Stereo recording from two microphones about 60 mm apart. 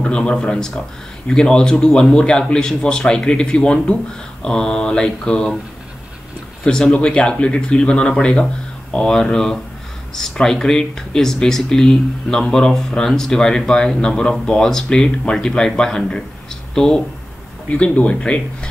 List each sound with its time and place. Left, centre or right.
0.0 s speech: centre
6.6 s speech: centre
17.6 s speech: left